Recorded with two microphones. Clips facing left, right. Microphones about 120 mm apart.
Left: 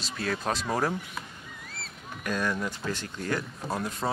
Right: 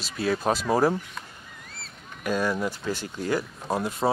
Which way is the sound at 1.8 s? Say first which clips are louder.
Right 4 dB; 5° right (ahead or behind).